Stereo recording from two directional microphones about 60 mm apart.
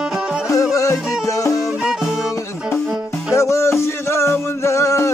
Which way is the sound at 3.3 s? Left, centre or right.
Left.